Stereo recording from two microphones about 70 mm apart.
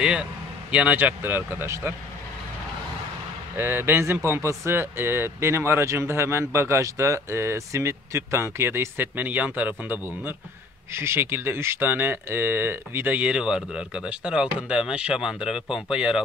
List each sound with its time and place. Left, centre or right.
0.0 s speech: centre
0.9 s speech: right
3.5 s speech: right
10.9 s speech: right; by 16.2 s centre